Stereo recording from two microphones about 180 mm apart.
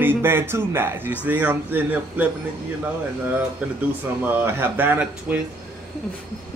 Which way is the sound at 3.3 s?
10° right (ahead or behind).